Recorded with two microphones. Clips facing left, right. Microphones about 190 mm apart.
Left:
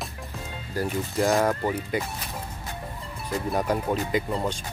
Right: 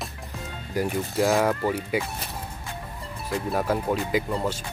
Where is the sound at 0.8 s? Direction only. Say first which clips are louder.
Right 2 dB; 15° right (ahead or behind).